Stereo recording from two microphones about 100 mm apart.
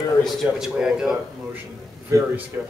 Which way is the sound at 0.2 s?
5° left (ahead or behind).